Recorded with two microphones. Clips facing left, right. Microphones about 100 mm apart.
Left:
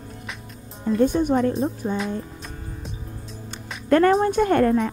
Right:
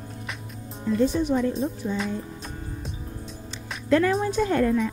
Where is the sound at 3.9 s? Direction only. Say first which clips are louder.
Left 4 dB; 55° left (ahead or behind).